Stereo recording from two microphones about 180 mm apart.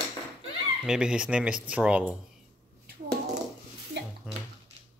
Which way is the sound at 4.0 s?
70° right (ahead or behind).